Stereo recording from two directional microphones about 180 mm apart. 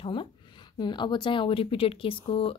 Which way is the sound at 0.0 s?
25° left (ahead or behind).